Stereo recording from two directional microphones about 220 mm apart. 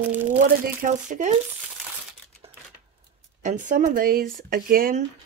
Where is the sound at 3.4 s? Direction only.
35° right (ahead or behind).